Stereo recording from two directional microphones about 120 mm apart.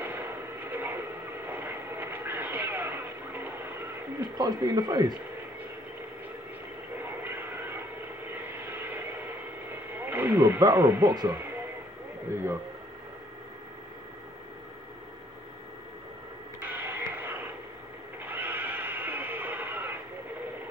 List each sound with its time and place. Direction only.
0.0 s train: 15° right (ahead or behind)
4.4 s speech: 35° right (ahead or behind)
7.0 s a sound: 15° right (ahead or behind)
8.5 s vehicle: 15° right (ahead or behind)
9.9 s speech: 15° right (ahead or behind)
16.6 s a sound: 15° right (ahead or behind)
18.2 s neigh: 15° right (ahead or behind)